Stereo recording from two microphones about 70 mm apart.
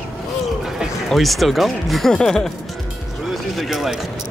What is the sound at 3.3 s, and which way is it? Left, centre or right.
Music, centre.